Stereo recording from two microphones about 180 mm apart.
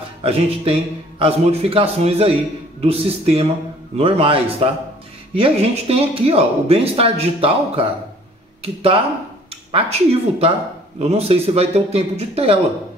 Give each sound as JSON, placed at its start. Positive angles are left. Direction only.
{"t": 0.2, "sound": "speech", "side_deg": -35}